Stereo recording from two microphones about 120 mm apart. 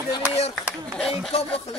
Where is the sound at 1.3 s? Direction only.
55° left (ahead or behind).